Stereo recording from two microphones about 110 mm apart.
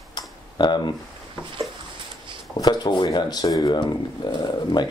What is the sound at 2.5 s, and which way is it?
Speech, 40° left (ahead or behind).